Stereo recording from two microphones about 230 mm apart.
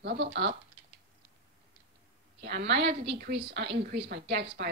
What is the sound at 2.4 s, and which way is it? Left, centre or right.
A woman's voice, right.